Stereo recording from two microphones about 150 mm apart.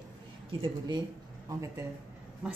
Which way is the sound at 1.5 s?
20° right (ahead or behind).